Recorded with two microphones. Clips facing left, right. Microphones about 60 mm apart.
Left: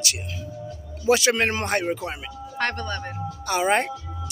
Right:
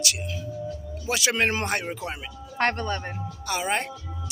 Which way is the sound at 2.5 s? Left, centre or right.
Right.